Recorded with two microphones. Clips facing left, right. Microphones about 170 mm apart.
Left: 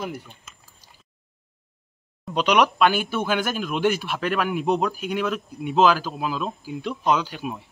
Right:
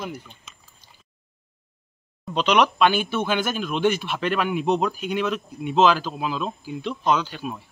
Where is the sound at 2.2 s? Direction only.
10° left (ahead or behind).